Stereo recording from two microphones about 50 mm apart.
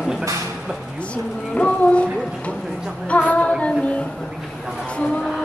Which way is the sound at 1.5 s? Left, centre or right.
Left.